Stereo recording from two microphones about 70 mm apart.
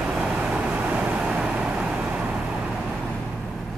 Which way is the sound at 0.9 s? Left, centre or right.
Centre.